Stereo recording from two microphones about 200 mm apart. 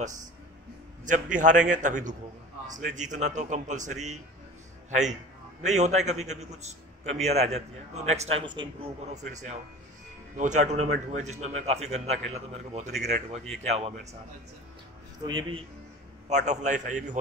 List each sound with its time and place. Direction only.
1.0 s a man's voice: 40° right (ahead or behind)
5.6 s a man's voice: 35° right (ahead or behind)
15.2 s speech: 25° right (ahead or behind)
16.3 s a man's voice: 35° right (ahead or behind)